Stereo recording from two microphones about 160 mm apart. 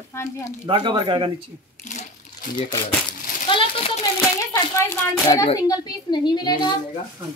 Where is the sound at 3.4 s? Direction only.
35° left (ahead or behind).